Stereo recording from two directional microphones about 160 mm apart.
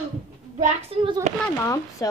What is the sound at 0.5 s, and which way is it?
Speech, 50° right (ahead or behind).